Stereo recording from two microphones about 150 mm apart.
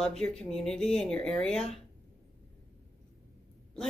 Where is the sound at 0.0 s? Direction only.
5° left (ahead or behind).